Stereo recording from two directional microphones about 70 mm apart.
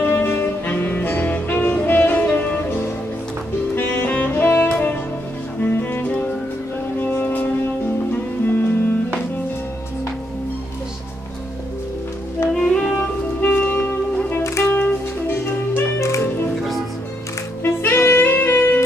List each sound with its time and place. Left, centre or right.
0.0 s saxophone: left
5.6 s music: left
12.6 s music: centre
13.4 s music: left
14.4 s music: left
14.7 s music: left
17.6 s saxophone: left